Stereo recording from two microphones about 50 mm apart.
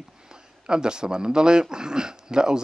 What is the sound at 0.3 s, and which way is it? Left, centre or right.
Speech, centre.